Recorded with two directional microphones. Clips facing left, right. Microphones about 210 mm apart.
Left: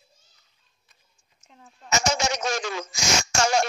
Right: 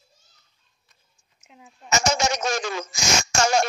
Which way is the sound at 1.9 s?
45° right (ahead or behind).